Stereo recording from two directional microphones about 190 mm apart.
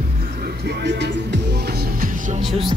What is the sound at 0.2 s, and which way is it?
Music, 55° right (ahead or behind).